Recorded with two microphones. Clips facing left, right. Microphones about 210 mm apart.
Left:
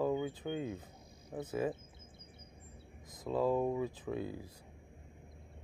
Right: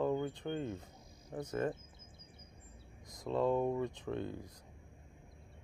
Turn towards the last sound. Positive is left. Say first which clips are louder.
# even
turn(degrees=5)  # may be behind; listen again after turning